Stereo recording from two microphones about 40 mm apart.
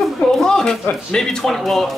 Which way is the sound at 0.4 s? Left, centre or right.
Centre.